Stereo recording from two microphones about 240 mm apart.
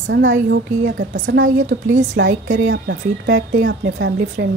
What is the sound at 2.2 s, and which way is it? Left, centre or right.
A woman's voice, right.